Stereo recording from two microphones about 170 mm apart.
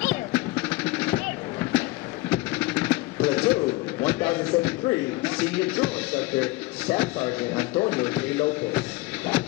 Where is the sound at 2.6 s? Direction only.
15° left (ahead or behind).